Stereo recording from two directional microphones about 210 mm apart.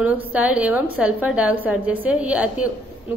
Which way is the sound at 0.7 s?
90° left.